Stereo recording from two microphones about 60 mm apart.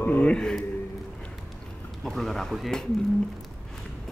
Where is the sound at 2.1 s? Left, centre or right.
Centre.